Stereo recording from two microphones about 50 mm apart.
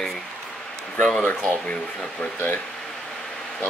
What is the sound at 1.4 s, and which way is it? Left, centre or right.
Speech, left.